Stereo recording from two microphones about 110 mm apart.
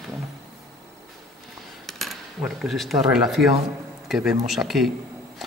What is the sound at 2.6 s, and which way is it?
Speech, centre (ahead or behind).